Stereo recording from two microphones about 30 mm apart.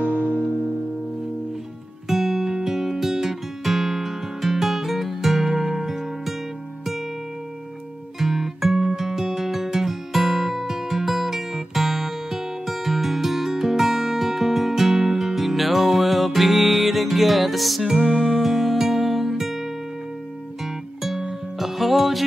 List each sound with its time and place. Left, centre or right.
0.0 s music: right
2.0 s music: centre
8.2 s music: centre
17.8 s music: centre
20.6 s music: centre